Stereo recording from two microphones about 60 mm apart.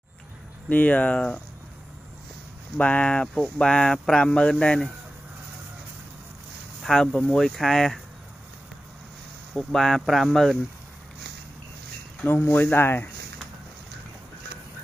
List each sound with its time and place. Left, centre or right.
0.7 s speech: left
2.8 s speech: left
6.8 s speech: centre
9.6 s speech: centre
12.3 s speech: left